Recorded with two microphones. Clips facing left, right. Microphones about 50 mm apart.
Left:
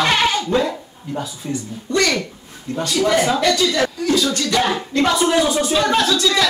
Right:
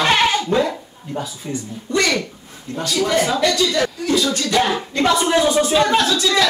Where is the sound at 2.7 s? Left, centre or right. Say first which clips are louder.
Left 1 dB; centre.